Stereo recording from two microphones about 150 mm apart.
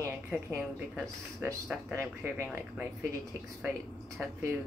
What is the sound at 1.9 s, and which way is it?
Speech, 15° right (ahead or behind).